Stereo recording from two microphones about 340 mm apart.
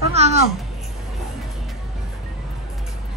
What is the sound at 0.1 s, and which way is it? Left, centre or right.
Babbling, centre.